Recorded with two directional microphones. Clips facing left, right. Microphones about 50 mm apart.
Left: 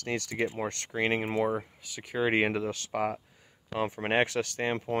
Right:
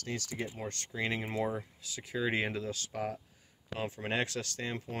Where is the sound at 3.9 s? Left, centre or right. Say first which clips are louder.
Left 7 dB; left.